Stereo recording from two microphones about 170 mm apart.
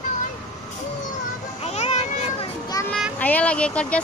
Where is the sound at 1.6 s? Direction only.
40° left (ahead or behind).